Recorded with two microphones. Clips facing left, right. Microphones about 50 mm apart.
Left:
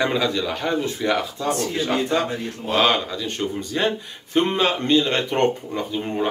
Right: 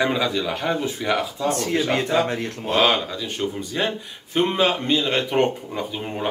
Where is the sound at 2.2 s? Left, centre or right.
Right.